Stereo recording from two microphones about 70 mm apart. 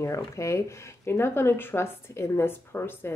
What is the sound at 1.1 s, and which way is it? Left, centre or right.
A woman's voice, left.